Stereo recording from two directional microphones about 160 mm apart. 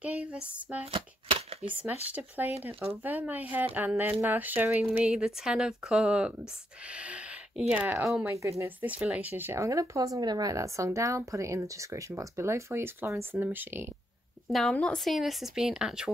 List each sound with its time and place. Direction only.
0.0 s a sound: 10° right (ahead or behind)
0.9 s shuffling cards: 40° right (ahead or behind)
1.7 s speech: 10° right (ahead or behind)
14.5 s speech: 5° left (ahead or behind)